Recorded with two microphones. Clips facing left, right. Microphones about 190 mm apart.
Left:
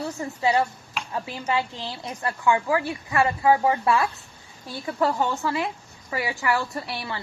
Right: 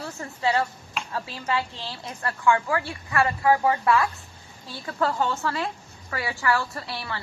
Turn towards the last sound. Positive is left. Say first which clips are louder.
# left 2 dB
turn(degrees=20)  # may be behind; listen again after turning